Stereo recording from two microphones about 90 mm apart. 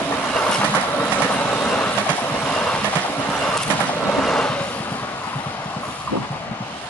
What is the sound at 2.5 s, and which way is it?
Vehicle, 10° left (ahead or behind).